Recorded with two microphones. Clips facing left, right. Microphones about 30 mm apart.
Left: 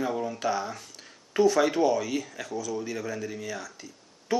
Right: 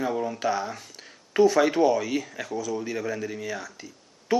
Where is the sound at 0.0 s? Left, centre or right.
Centre.